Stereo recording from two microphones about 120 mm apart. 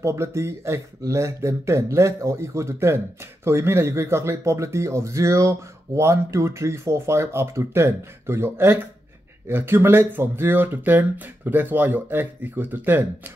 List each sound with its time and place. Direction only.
0.0 s speech: 25° right (ahead or behind)